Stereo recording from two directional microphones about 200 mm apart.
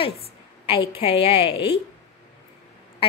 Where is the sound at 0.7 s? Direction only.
25° left (ahead or behind).